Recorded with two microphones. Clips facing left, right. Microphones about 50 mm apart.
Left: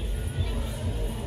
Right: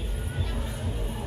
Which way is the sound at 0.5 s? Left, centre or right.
Centre.